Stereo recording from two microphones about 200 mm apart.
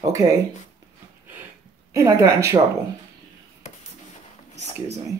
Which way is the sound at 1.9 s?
15° right (ahead or behind).